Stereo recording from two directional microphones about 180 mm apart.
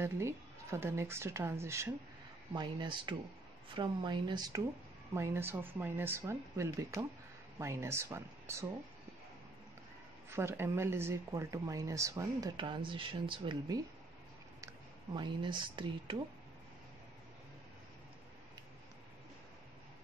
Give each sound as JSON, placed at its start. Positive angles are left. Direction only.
{"t": 0.0, "sound": "speech", "side_deg": -15}
{"t": 2.5, "sound": "speech", "side_deg": -25}
{"t": 10.3, "sound": "speech", "side_deg": -15}
{"t": 15.1, "sound": "speech", "side_deg": -25}